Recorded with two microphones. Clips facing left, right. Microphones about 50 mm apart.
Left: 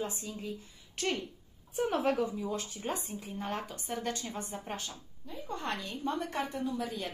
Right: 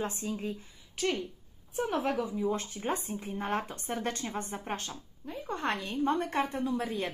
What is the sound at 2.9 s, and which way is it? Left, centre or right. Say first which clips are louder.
Speech: right 4 dB; right.